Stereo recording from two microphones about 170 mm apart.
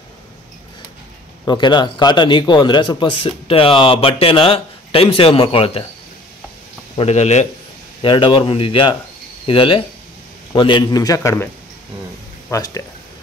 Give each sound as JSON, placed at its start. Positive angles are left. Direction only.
{"t": 1.4, "sound": "a man's voice", "side_deg": 25}
{"t": 7.0, "sound": "a man's voice", "side_deg": 40}
{"t": 8.0, "sound": "a man's voice", "side_deg": 30}
{"t": 12.4, "sound": "speech", "side_deg": 20}